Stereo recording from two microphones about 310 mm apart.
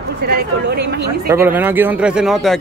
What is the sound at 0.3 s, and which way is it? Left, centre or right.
Speech, right.